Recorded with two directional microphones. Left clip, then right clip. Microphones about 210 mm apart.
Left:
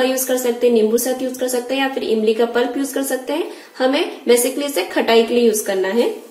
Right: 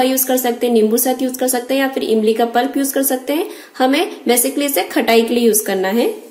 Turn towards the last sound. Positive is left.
turn(degrees=-50)  # may be behind; listen again after turning